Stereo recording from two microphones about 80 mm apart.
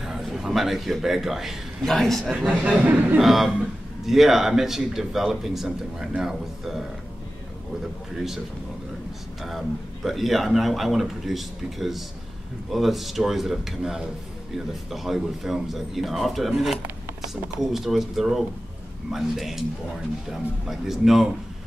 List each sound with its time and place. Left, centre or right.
0.0 s a man's voice: centre
2.3 s a man's voice: centre
9.4 s a man's voice: centre